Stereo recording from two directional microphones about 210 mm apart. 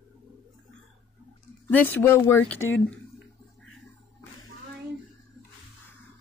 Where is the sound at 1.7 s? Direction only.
10° left (ahead or behind).